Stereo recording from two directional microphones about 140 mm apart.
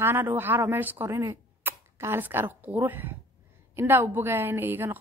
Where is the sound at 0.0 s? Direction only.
15° right (ahead or behind).